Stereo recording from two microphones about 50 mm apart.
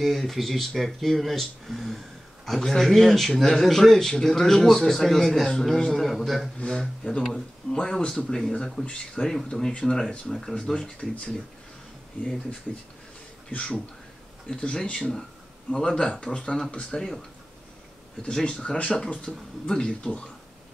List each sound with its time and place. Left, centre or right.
0.0 s speech: centre
6.6 s speech: centre
14.6 s speech: centre
18.4 s speech: centre